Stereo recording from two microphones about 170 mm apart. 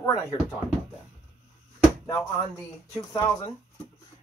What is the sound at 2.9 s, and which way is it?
Speech, 15° left (ahead or behind).